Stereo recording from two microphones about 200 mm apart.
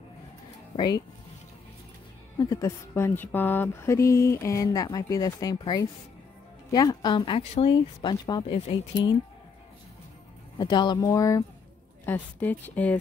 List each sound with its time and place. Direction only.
0.7 s speech: 20° left (ahead or behind)
2.3 s speech: 15° left (ahead or behind)
10.6 s speech: 20° left (ahead or behind)